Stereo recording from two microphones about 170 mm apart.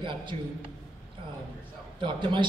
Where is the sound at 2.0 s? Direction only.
30° right (ahead or behind).